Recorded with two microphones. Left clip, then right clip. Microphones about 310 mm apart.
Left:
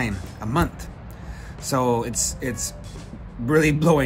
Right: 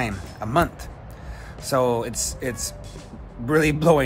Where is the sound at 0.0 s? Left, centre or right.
Centre.